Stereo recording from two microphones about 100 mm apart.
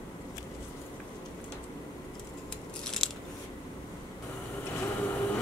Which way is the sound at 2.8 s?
5° left (ahead or behind).